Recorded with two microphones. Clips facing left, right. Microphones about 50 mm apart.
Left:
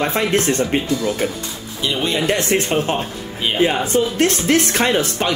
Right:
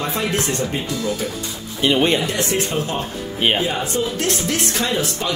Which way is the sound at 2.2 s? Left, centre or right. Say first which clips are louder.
Left 4 dB; left.